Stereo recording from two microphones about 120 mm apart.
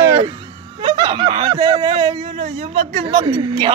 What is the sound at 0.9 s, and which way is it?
Snicker, 40° right (ahead or behind).